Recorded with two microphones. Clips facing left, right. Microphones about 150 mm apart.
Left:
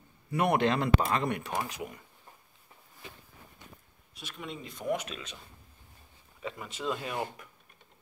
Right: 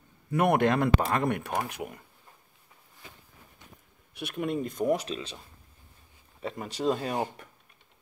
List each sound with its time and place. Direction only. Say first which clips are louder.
0.3 s speech: right 3 dB; 55° right (ahead or behind)
4.1 s speech: right 11 dB; 60° right (ahead or behind); by 5.4 s 30° right (ahead or behind)
6.4 s speech: right 6 dB; 40° right (ahead or behind)